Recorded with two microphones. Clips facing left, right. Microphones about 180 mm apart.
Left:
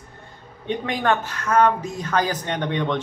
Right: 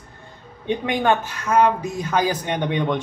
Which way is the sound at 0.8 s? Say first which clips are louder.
Right 2 dB; 10° right (ahead or behind).